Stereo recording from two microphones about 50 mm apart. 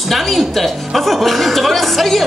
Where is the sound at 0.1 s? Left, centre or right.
Centre.